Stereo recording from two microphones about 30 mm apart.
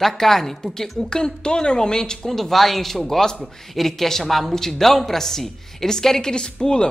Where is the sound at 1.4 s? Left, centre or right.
Left.